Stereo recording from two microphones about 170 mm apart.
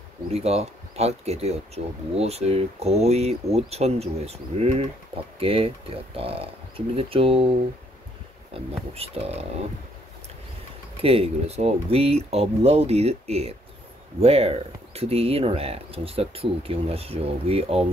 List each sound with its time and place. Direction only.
0.3 s speech: 35° right (ahead or behind)
8.5 s speech: 35° right (ahead or behind)
11.0 s speech: 35° right (ahead or behind)